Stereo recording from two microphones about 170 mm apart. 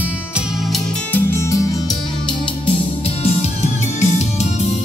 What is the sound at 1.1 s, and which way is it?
Music, 15° left (ahead or behind).